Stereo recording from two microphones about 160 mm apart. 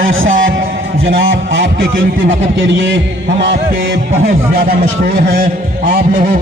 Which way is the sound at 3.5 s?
70° right (ahead or behind).